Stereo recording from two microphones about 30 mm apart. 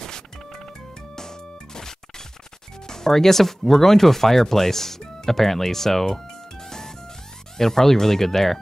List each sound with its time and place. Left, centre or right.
0.0 s music: centre
2.9 s speech: centre